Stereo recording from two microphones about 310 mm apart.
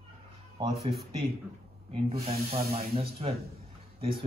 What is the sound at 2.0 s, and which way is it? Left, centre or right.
Speech, centre.